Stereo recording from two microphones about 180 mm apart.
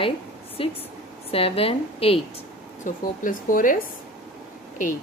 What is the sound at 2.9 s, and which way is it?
Speech, 50° left (ahead or behind).